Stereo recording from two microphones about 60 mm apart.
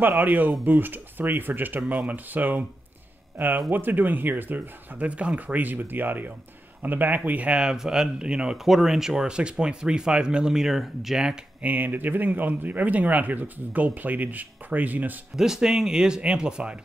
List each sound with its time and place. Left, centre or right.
0.0 s speech: right
8.6 s speech: centre
11.6 s speech: right
15.3 s speech: centre